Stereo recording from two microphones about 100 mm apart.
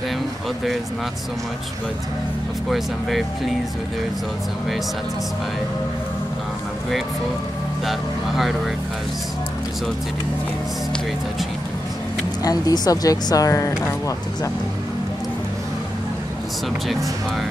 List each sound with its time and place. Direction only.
2.7 s speech: centre (ahead or behind)
7.8 s speech: centre (ahead or behind)
12.4 s speech: 40° left (ahead or behind)
16.8 s speech: centre (ahead or behind)